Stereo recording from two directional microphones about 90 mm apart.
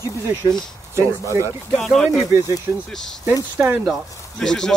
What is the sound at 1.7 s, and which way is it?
Speech, 5° left (ahead or behind).